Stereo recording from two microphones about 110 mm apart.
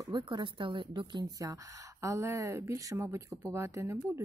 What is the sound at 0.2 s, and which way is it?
A woman's voice, 45° right (ahead or behind).